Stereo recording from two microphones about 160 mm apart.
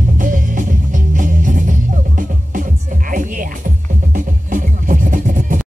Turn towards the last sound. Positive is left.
turn(degrees=-55)  # may be behind; listen again after turning